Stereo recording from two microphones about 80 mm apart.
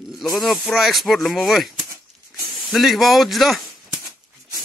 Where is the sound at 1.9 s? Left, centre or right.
Right.